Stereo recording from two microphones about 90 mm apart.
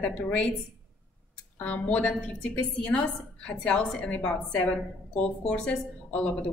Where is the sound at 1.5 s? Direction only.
20° left (ahead or behind).